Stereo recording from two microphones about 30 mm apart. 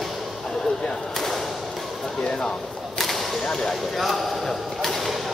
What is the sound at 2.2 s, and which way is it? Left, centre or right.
Speech, left.